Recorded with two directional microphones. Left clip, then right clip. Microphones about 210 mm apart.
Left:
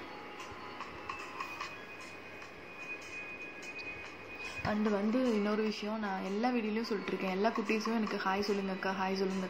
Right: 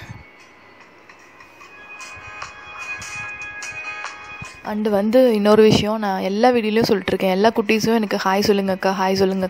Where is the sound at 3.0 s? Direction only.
50° right (ahead or behind).